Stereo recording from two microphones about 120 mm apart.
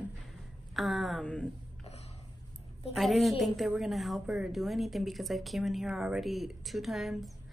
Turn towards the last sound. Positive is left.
turn(degrees=0)  # may be behind; listen again after turning